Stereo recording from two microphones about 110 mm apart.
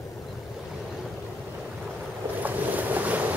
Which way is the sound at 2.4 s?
15° right (ahead or behind).